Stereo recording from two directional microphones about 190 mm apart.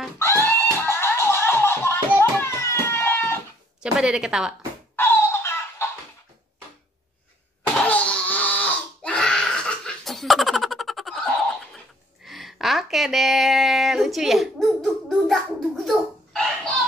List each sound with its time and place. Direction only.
0.2 s music: 10° left (ahead or behind)
3.8 s a woman's voice: 5° right (ahead or behind)
4.9 s music: 15° left (ahead or behind)
7.6 s a sound: 5° left (ahead or behind)